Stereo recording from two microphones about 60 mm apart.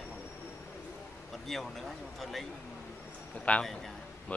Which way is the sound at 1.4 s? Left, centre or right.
Centre.